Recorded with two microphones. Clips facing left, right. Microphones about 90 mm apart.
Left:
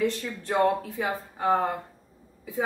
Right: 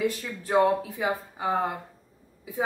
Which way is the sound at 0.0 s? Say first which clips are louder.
Left 1 dB; 10° right (ahead or behind).